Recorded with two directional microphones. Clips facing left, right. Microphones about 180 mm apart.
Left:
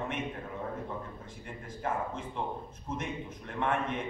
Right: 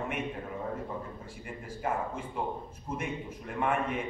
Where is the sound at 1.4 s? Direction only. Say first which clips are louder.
Right 2 dB; 10° right (ahead or behind).